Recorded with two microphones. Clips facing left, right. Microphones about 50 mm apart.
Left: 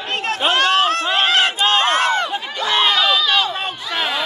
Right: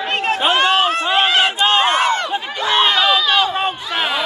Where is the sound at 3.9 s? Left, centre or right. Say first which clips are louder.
Right 2 dB; centre.